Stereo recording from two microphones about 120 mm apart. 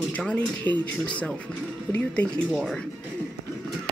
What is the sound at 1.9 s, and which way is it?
Speech, 10° left (ahead or behind).